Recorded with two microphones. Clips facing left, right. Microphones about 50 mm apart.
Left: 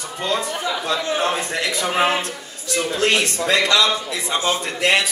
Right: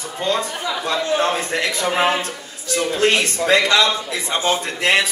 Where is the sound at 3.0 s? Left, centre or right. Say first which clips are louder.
Right 2 dB; centre.